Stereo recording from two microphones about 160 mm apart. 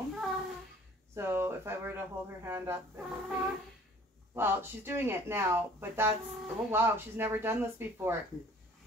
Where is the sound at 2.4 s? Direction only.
15° right (ahead or behind).